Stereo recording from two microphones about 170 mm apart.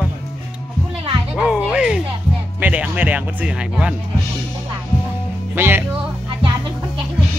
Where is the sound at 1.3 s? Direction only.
5° right (ahead or behind).